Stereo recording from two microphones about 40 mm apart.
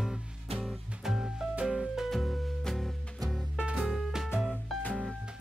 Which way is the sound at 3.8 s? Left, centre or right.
Centre.